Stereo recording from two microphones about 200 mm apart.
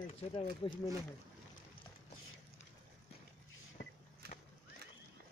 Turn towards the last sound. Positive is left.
turn(degrees=-50)  # may be behind; listen again after turning